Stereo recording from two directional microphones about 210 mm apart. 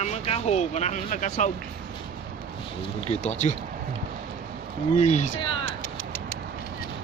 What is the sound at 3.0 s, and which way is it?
Speech, 35° left (ahead or behind).